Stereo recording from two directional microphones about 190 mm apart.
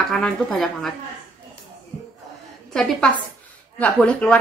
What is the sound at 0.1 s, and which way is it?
Speech, centre (ahead or behind).